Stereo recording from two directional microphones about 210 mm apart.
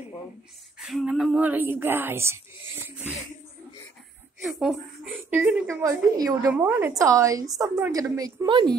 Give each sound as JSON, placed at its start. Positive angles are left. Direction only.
{"t": 0.7, "sound": "speech", "side_deg": 0}
{"t": 4.4, "sound": "speech", "side_deg": 0}